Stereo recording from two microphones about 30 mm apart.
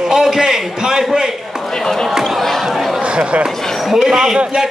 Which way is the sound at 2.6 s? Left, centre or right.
Centre.